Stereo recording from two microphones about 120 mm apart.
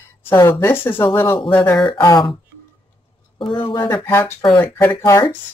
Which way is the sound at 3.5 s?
40° left (ahead or behind).